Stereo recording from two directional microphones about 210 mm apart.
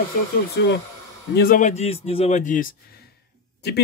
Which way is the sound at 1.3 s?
40° left (ahead or behind).